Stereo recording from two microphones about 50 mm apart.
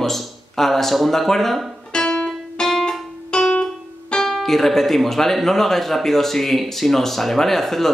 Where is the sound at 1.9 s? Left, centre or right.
Centre.